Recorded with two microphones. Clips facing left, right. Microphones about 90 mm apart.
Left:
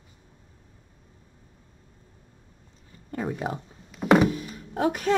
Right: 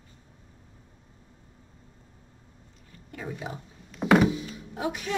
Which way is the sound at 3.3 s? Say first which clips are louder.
Left 6 dB; 50° left (ahead or behind).